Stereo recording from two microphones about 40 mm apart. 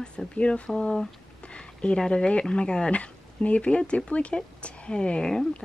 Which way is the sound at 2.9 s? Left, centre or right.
Left.